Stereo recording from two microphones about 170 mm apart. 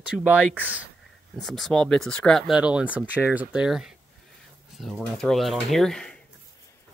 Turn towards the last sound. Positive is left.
turn(degrees=5)  # may be behind; listen again after turning